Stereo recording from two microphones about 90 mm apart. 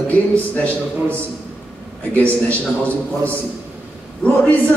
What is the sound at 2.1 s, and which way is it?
A man's voice, 15° left (ahead or behind).